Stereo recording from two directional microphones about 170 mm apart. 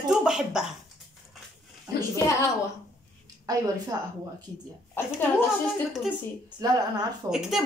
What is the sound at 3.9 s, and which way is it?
Speech, 20° right (ahead or behind).